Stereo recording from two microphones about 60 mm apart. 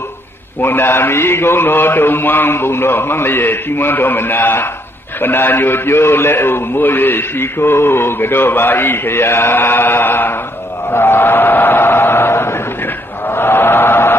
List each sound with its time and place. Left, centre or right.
0.6 s a man's voice: left
10.9 s chant: left